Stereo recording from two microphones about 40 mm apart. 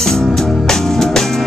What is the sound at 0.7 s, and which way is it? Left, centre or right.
Music, centre.